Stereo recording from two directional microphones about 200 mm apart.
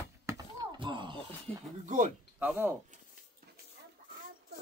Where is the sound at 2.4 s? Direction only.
10° right (ahead or behind).